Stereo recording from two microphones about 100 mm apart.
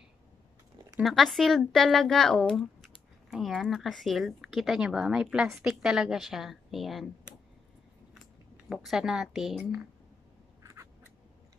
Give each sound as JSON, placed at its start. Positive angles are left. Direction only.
{"t": 1.0, "sound": "speech", "side_deg": 0}
{"t": 8.6, "sound": "speech", "side_deg": 0}
{"t": 10.6, "sound": "a sound", "side_deg": -30}